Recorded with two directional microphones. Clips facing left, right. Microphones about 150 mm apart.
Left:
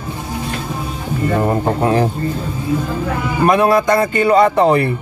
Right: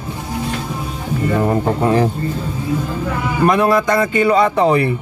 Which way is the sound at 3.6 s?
5° left (ahead or behind).